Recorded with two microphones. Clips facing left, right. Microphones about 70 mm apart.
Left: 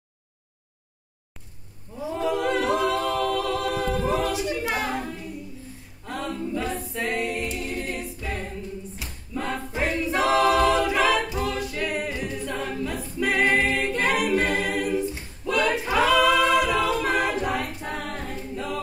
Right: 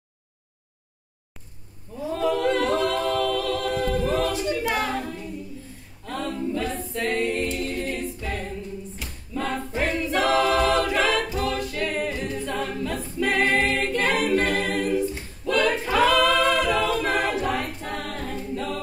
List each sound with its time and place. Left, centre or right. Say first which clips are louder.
2.1 s a capella: right 2 dB; centre
6.0 s a capella: right 2 dB; centre
9.3 s choir: right 2 dB; centre
11.3 s a capella: right 1 dB; centre
12.5 s choir: right 1 dB; centre
13.7 s a capella: even; centre